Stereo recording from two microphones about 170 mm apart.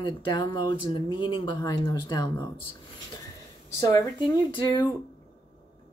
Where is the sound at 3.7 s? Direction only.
20° left (ahead or behind).